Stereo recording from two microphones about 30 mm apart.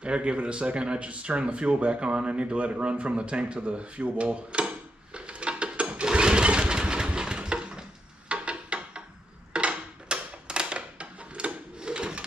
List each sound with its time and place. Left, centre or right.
0.0 s speech: right
6.1 s engine: right
8.3 s a sound: right